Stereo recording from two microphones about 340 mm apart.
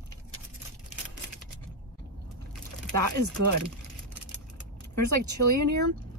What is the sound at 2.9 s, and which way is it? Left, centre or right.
Speech, right.